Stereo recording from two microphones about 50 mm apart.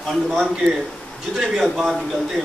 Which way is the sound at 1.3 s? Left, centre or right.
Centre.